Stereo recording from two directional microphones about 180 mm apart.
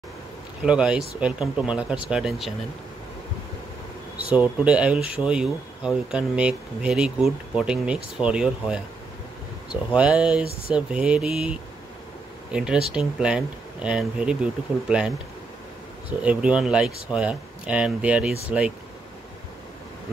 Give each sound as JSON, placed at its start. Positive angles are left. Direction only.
{"t": 0.7, "sound": "speech", "side_deg": -5}
{"t": 4.3, "sound": "speech", "side_deg": -5}
{"t": 9.9, "sound": "speech", "side_deg": -5}
{"t": 12.5, "sound": "speech", "side_deg": -5}